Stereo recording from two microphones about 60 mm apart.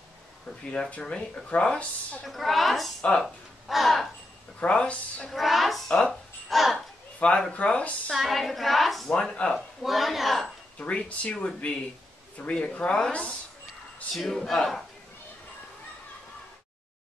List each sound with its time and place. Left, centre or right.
0.5 s speech: centre
2.2 s a woman's voice: centre
3.2 s a sound: centre
4.6 s speech: centre
5.3 s a sound: centre
5.9 s speech: centre
6.5 s a sound: centre
7.2 s speech: centre
8.1 s a woman's voice: centre
9.8 s a woman's voice: centre
10.8 s speech: centre
14.1 s a woman's voice: centre